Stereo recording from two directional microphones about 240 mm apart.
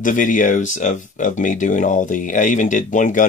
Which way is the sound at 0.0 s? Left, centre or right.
Left.